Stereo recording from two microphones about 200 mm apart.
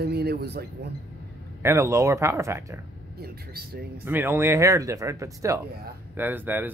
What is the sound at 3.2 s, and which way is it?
Speech, 50° right (ahead or behind).